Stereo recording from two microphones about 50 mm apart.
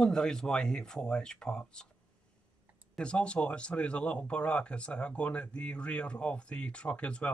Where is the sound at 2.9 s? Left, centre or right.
Left.